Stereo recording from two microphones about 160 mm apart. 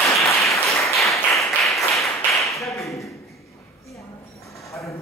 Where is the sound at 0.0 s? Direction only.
20° left (ahead or behind).